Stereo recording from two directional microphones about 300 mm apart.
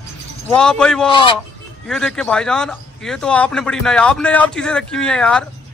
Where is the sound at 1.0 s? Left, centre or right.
Centre.